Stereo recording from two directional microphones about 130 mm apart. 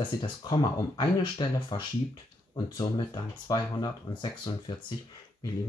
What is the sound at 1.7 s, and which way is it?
Speech, 40° left (ahead or behind).